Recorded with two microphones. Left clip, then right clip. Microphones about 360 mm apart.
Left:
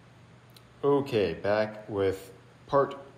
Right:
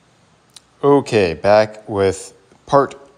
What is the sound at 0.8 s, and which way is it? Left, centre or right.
Speech, centre.